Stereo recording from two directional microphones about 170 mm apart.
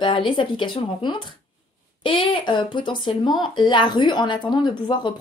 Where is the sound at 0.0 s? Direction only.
30° left (ahead or behind).